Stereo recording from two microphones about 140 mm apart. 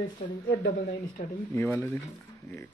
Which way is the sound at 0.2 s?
45° left (ahead or behind).